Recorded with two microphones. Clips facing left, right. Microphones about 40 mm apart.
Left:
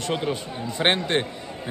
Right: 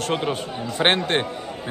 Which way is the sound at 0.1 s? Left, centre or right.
Right.